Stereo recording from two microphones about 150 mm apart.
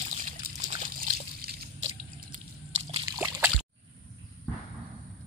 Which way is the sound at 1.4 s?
90° right.